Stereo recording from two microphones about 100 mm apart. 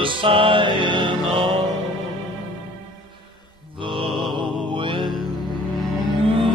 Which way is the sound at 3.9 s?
60° right (ahead or behind).